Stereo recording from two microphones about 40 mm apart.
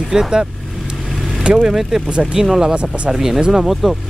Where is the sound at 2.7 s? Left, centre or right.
Right.